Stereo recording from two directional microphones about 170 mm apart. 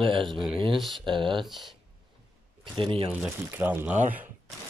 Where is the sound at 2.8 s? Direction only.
30° right (ahead or behind).